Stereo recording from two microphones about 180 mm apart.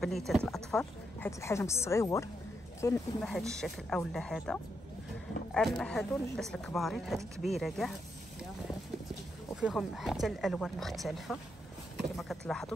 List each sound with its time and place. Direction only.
0.0 s speech: centre (ahead or behind)
1.4 s a woman's voice: 15° left (ahead or behind)
3.2 s speech: centre (ahead or behind)
9.6 s speech: centre (ahead or behind)